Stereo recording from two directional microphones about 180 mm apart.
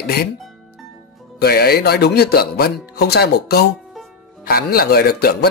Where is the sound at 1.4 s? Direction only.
60° left (ahead or behind).